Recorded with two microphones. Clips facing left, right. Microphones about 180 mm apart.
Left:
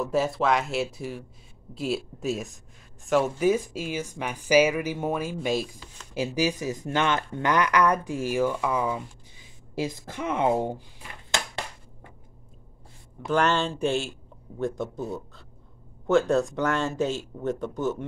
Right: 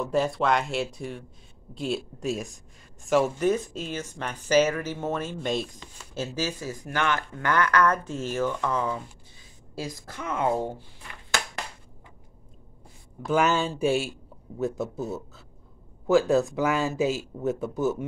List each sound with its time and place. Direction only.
0.0 s speech: 5° left (ahead or behind)
9.8 s speech: 20° left (ahead or behind)
13.3 s speech: 5° right (ahead or behind)